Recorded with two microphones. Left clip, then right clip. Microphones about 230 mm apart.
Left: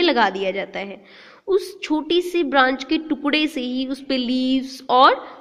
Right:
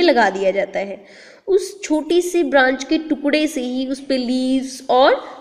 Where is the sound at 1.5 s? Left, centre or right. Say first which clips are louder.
Right 3 dB; left.